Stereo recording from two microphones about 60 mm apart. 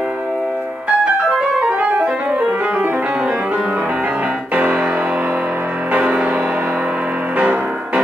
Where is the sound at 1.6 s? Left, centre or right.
Right.